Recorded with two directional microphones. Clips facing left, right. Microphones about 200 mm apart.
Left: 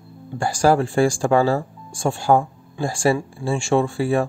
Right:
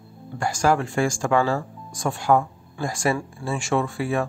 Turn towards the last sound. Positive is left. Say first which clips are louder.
# left 4 dB
turn(degrees=30)  # may be behind; listen again after turning